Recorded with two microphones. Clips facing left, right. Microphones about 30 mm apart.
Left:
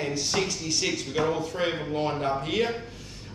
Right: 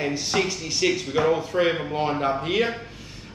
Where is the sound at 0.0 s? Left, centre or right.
Centre.